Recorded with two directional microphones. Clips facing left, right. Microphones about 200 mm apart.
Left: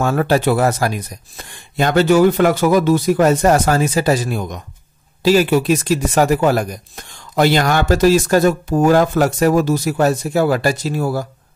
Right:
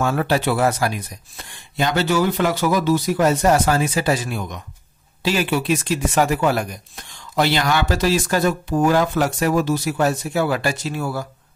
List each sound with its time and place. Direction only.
0.0 s speech: 45° left (ahead or behind)